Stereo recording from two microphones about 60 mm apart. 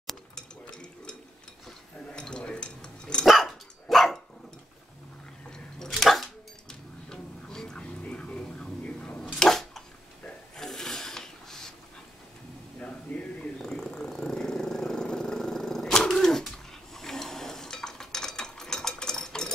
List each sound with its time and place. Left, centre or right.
2.1 s dog: centre
3.3 s dog: centre
5.5 s a sound: centre
9.4 s bathtub: centre
10.2 s drawer open or close: centre
12.8 s purr: centre